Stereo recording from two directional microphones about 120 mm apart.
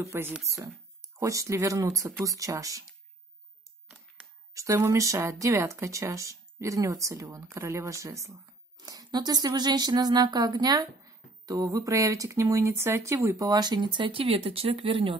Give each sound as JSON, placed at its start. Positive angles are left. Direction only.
{"t": 0.0, "sound": "speech", "side_deg": -20}
{"t": 4.6, "sound": "speech", "side_deg": -25}